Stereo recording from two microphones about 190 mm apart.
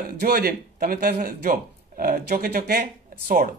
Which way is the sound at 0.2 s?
50° right (ahead or behind).